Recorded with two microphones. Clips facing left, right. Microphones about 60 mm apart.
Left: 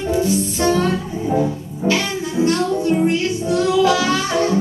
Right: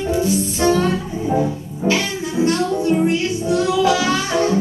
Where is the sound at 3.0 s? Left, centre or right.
Centre.